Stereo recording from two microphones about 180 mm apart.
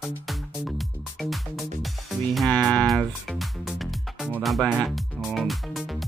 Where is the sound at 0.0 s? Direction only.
Centre (ahead or behind).